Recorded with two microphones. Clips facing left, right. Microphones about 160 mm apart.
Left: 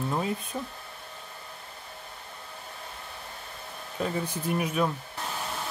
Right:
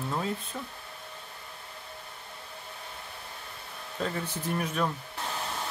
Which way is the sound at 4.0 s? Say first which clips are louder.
Left 3 dB; 10° left (ahead or behind).